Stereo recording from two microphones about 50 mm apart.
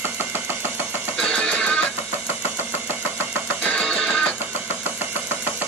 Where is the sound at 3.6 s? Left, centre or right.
Left.